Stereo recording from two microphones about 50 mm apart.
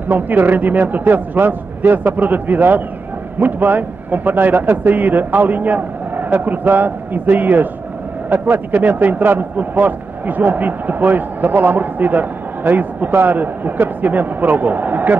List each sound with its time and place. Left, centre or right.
0.1 s speech: right